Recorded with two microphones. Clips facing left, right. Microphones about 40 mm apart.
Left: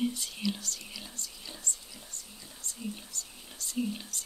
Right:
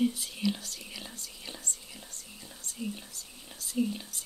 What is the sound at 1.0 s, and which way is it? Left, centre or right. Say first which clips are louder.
Whispering: right 1 dB; right.